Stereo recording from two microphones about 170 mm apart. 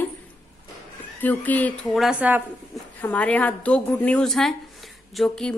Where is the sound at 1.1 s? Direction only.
10° left (ahead or behind); by 2.4 s 10° right (ahead or behind).